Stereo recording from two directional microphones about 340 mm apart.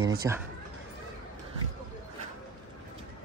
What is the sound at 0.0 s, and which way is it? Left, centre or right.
Speech, right.